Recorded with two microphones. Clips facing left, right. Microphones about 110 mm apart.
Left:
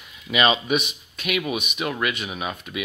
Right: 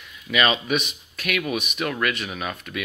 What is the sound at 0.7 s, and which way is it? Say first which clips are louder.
Speech: left 1 dB; centre (ahead or behind).